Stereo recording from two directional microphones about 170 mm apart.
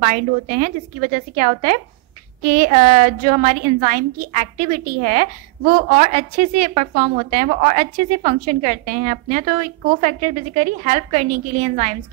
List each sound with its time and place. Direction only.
0.0 s a woman's voice: 55° right (ahead or behind)